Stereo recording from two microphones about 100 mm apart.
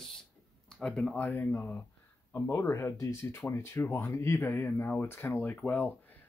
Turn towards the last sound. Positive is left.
turn(degrees=20)  # may be behind; listen again after turning